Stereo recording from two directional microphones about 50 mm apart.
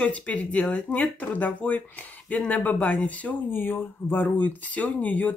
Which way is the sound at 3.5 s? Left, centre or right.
Left.